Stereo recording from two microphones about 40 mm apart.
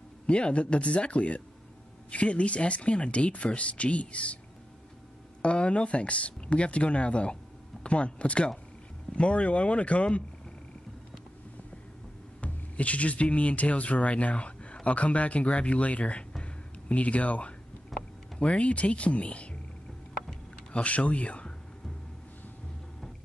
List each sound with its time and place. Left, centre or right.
0.3 s speech: left
5.4 s speech: left
12.4 s speech: left
16.3 s a sound: left
17.9 s a sound: centre
18.4 s speech: left
20.7 s speech: left